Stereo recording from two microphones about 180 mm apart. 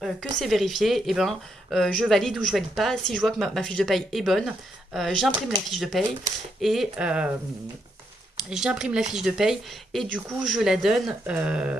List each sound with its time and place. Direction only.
0.0 s speech: centre (ahead or behind)
8.5 s speech: 5° right (ahead or behind)